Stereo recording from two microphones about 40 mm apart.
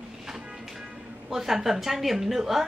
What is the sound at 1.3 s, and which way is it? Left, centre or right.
A woman's voice, centre.